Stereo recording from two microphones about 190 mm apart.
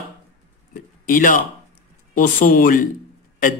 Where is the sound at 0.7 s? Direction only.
45° left (ahead or behind).